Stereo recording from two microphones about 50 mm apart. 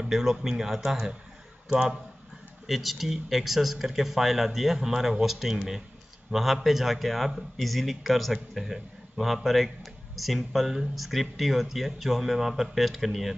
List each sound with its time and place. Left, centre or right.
0.0 s speech: centre
2.6 s a man's voice: centre